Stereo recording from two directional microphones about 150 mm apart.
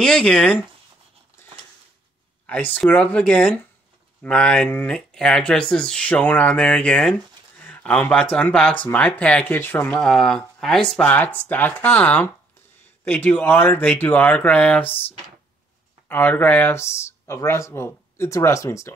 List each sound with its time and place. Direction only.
0.0 s speech: 5° left (ahead or behind)
2.4 s speech: 10° left (ahead or behind)
16.1 s speech: 10° left (ahead or behind)